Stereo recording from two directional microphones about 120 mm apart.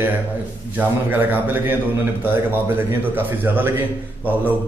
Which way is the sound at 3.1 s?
15° right (ahead or behind).